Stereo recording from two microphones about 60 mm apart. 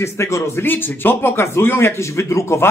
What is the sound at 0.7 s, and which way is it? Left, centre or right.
Speech, left.